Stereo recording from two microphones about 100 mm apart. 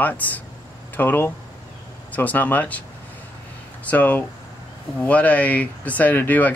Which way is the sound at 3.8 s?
15° left (ahead or behind).